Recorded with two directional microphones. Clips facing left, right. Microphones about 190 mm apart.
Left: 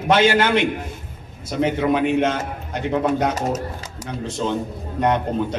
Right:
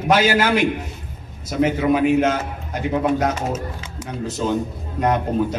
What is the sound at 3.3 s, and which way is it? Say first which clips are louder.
Speech: left 1 dB; 40° left (ahead or behind).